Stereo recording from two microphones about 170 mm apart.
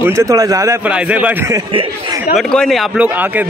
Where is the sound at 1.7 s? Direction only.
30° right (ahead or behind).